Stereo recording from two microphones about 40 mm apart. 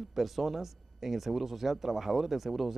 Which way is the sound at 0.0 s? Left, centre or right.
Centre.